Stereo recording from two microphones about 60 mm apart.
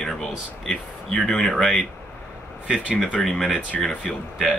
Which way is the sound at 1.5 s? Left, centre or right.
Centre.